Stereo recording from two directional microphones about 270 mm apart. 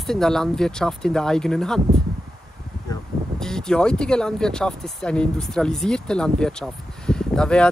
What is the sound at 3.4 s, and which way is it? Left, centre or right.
Speech, centre.